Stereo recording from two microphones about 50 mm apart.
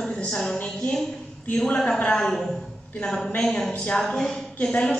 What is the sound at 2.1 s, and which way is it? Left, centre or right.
A man's voice, centre.